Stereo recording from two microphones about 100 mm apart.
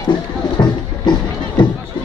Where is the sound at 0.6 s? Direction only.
45° left (ahead or behind).